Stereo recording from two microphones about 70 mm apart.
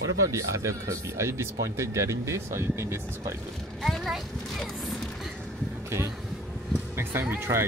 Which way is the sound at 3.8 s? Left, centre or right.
Centre.